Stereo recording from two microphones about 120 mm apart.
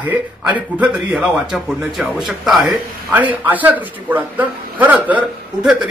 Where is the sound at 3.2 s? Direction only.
15° right (ahead or behind).